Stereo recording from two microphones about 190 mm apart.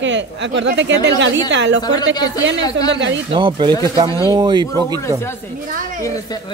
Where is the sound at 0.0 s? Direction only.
75° right (ahead or behind).